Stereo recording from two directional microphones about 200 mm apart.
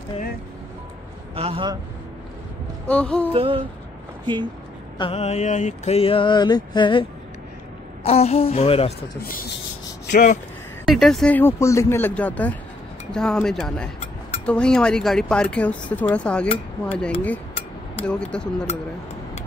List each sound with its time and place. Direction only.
1.3 s a man's voice: 30° right (ahead or behind)
2.9 s speech: 5° left (ahead or behind)
3.3 s a man's voice: 25° right (ahead or behind)
4.9 s a sound: 25° left (ahead or behind)
8.0 s a woman's voice: 30° left (ahead or behind)
9.2 s rub: 45° left (ahead or behind)
10.1 s a woman's voice: 40° left (ahead or behind)
10.9 s speech: centre (ahead or behind)